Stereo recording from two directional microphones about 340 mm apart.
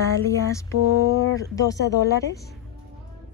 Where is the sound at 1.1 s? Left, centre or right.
Left.